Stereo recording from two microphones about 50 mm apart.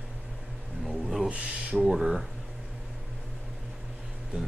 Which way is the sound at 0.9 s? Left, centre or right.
Centre.